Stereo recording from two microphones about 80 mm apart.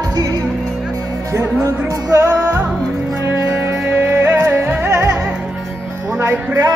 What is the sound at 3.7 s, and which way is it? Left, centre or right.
Music, right.